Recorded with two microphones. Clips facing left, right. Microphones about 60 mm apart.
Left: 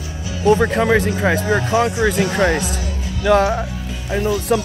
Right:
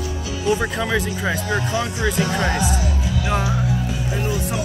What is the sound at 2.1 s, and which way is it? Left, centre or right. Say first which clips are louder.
Speech: left 4 dB; left.